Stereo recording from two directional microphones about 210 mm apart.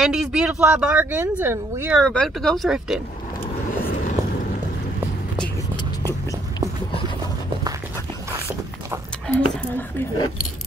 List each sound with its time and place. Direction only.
0.0 s speech: 5° right (ahead or behind)
2.0 s speech: centre (ahead or behind)
3.8 s vehicle: 40° left (ahead or behind)
9.3 s speech: 10° left (ahead or behind)